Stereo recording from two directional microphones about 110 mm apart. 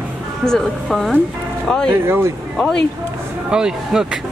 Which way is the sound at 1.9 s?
20° right (ahead or behind).